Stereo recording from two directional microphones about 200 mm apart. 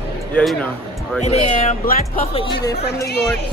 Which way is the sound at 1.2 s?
35° left (ahead or behind).